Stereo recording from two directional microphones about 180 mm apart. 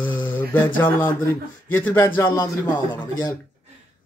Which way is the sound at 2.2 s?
20° left (ahead or behind).